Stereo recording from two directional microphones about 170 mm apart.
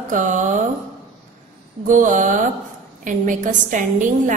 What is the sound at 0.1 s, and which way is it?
Speech, 50° right (ahead or behind).